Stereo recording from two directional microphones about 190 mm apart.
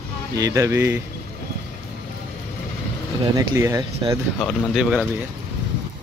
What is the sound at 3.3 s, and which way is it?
Speech, 15° right (ahead or behind).